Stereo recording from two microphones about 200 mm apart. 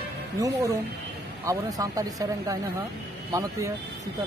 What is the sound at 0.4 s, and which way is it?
Speech, 15° right (ahead or behind).